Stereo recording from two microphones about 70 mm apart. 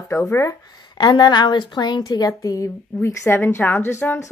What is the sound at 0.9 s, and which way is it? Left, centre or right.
A woman's voice, left.